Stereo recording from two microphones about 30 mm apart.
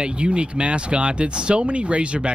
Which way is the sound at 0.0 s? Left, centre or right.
Right.